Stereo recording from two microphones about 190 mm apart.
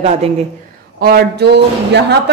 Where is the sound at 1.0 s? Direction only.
55° right (ahead or behind).